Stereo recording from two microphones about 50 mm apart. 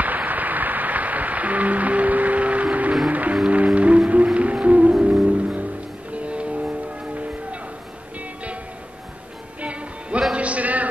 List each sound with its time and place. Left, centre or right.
0.0 s applause: right
3.1 s music: right
9.6 s music: right
10.3 s a sound: right